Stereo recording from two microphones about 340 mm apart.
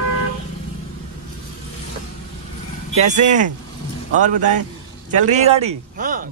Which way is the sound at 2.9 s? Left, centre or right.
Right.